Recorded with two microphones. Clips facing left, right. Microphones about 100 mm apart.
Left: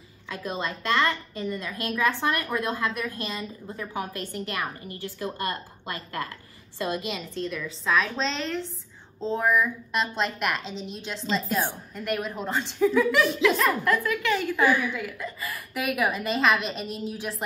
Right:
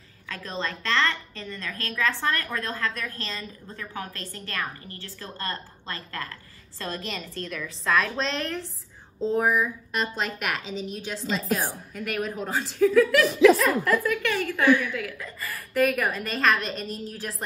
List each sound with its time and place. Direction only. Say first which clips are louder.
0.3 s a woman's voice: left 1 dB; 15° left (ahead or behind)